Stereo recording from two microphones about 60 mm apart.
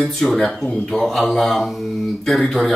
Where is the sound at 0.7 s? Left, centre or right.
Centre.